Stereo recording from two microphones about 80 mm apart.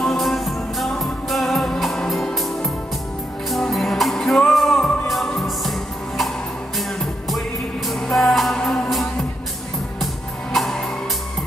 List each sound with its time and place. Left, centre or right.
0.0 s music: centre
10.5 s music: centre